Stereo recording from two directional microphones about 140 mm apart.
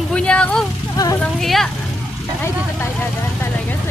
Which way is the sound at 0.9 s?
25° left (ahead or behind).